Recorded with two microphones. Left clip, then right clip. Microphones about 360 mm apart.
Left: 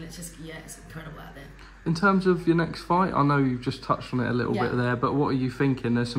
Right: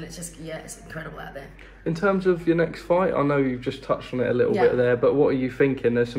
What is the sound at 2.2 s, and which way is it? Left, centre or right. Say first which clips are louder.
Speech: right 2 dB; centre.